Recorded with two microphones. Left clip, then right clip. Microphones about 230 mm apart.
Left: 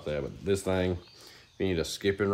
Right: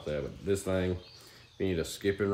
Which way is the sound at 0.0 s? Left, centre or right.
Centre.